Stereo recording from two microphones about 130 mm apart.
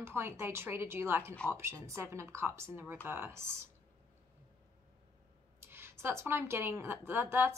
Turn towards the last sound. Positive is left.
turn(degrees=-15)  # may be behind; listen again after turning